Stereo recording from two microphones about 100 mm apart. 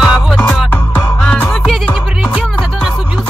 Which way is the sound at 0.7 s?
20° left (ahead or behind).